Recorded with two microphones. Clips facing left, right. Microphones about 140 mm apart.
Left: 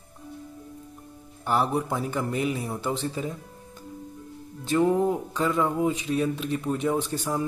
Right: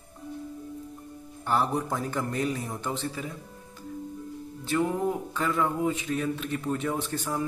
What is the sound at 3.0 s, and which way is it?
Speech, 30° left (ahead or behind).